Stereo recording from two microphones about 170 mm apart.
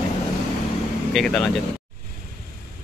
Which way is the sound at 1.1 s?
5° left (ahead or behind).